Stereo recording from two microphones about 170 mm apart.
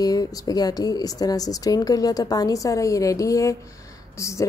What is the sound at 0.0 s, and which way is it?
A woman's voice, 20° left (ahead or behind).